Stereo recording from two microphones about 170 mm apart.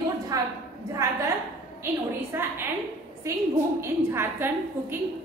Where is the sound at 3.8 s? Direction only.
15° right (ahead or behind).